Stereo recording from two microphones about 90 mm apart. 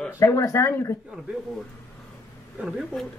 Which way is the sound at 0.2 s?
35° left (ahead or behind).